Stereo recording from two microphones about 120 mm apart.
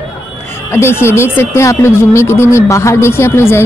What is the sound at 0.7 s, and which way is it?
Speech, 20° left (ahead or behind).